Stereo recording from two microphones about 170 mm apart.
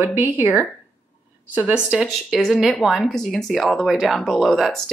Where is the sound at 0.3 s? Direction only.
10° right (ahead or behind).